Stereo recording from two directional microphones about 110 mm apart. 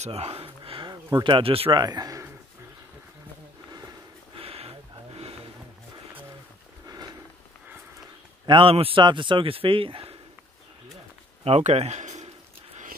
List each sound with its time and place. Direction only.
0.0 s a sound: 70° right (ahead or behind)
1.1 s speech: 50° right (ahead or behind)
1.8 s a man's voice: 40° right (ahead or behind)
4.4 s a sound: 60° right (ahead or behind)
8.5 s speech: 50° right (ahead or behind)
11.4 s speech: 70° right (ahead or behind); by 12.3 s 90° right